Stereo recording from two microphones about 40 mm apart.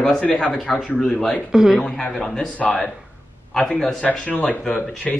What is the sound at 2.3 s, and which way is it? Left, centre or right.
Speech, left.